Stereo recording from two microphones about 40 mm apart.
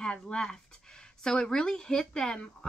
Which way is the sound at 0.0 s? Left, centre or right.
Left.